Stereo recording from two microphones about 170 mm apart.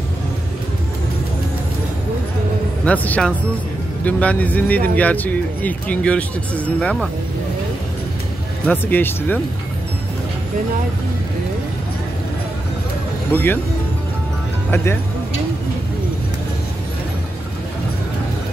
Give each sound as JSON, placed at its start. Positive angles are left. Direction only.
{"t": 2.8, "sound": "speech", "side_deg": 10}
{"t": 8.6, "sound": "speech", "side_deg": 10}
{"t": 13.3, "sound": "speech", "side_deg": 10}